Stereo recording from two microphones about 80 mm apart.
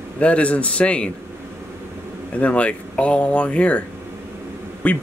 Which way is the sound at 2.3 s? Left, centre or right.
Centre.